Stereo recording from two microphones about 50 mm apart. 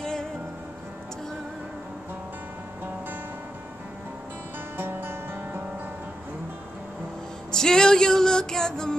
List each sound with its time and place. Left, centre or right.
0.0 s music: centre
4.7 s music: right
7.5 s music: centre